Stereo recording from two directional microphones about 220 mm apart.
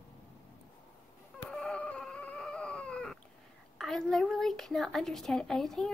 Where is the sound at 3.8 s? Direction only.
Centre (ahead or behind).